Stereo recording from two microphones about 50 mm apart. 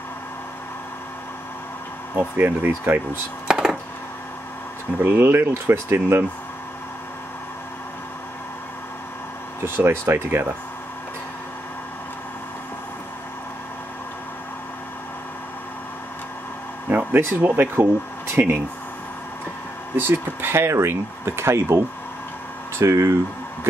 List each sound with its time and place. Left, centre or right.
2.1 s speech: right
3.4 s a sound: centre
5.0 s speech: right
9.8 s speech: right
16.9 s a sound: right
17.4 s speech: right
20.0 s speech: right